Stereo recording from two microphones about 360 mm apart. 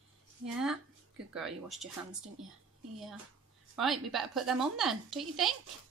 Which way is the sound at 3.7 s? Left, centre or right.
Centre.